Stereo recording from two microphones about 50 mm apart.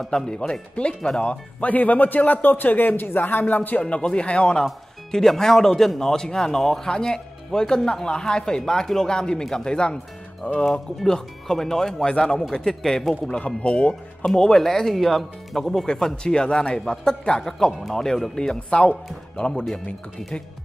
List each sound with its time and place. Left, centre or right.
0.1 s speech: centre; by 3.8 s left
3.8 s speech: centre
5.1 s speech: centre; by 10.6 s left
11.1 s speech: centre
13.1 s speech: left
14.2 s speech: centre